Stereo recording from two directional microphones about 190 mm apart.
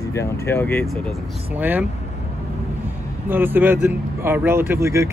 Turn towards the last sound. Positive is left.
turn(degrees=-15)  # may be behind; listen again after turning